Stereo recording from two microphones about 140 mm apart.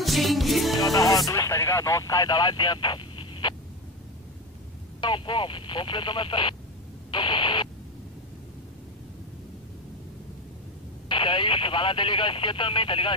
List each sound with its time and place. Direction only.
0.0 s music: centre (ahead or behind)
0.7 s music: 25° left (ahead or behind)
5.0 s speech: 35° left (ahead or behind)
7.1 s radio: 35° left (ahead or behind)
11.1 s speech: 35° left (ahead or behind)